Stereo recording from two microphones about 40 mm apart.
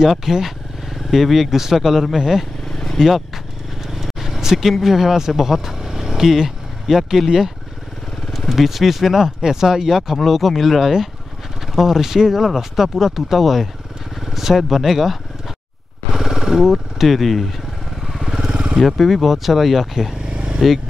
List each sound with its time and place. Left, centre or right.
0.0 s speech: centre
4.0 s vehicle: centre
4.7 s speech: centre
8.3 s speech: centre
14.2 s vehicle: centre
14.7 s speech: centre
18.0 s motorcycle: centre
18.9 s speech: centre
20.2 s vehicle: right